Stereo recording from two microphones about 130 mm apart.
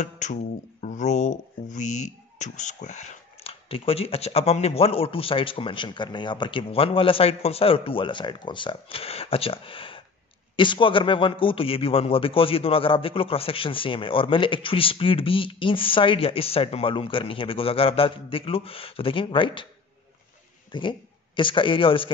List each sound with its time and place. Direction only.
0.0 s speech: 70° left (ahead or behind)
3.6 s a man's voice: 45° left (ahead or behind)
20.7 s a man's voice: 40° left (ahead or behind)